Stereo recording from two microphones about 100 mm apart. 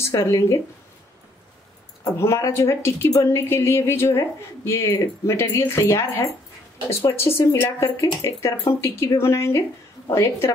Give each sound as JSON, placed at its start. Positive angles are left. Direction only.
{"t": 0.0, "sound": "speech", "side_deg": 30}
{"t": 2.1, "sound": "speech", "side_deg": 30}